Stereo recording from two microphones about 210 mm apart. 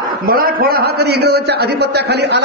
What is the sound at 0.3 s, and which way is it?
A man's voice, 45° right (ahead or behind).